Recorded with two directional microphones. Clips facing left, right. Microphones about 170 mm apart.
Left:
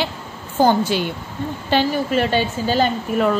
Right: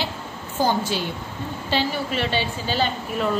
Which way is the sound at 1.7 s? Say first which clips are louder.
Left 6 dB; 45° left (ahead or behind).